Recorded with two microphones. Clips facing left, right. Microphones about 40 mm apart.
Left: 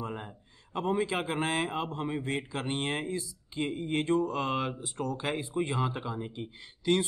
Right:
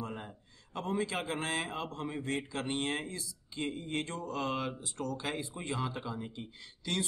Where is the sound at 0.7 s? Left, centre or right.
Left.